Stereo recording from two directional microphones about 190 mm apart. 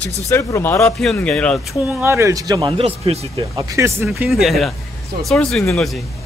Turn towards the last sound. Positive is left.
turn(degrees=0)  # may be behind; listen again after turning